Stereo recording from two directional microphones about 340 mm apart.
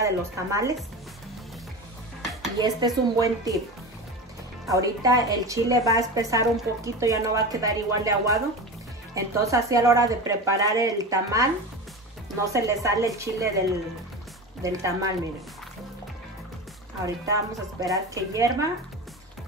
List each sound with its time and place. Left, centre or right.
0.0 s a woman's voice: centre
2.6 s a woman's voice: centre
4.6 s a woman's voice: centre
14.6 s a woman's voice: centre
17.0 s a woman's voice: centre